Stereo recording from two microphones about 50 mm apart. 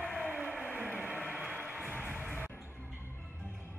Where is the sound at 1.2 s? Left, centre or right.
Left.